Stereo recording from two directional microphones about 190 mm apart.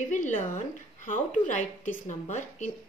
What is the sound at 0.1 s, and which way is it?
Speech, 40° left (ahead or behind).